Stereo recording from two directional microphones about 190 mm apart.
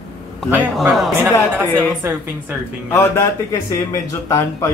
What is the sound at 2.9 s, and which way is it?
A man's voice, 15° left (ahead or behind).